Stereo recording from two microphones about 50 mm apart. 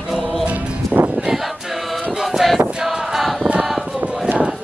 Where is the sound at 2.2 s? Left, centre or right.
Centre.